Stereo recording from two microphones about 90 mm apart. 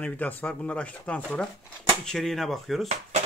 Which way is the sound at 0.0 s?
20° left (ahead or behind).